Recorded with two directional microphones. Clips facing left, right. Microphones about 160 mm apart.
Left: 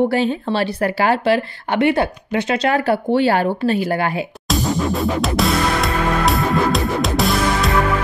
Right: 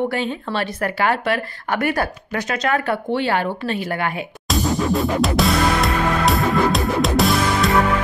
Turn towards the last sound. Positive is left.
turn(degrees=0)  # may be behind; listen again after turning